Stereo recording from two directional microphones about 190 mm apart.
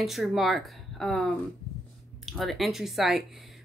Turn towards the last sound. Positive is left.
turn(degrees=0)  # may be behind; listen again after turning